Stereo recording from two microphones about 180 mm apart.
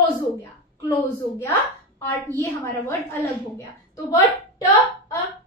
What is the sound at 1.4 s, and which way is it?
A woman's voice, 15° left (ahead or behind).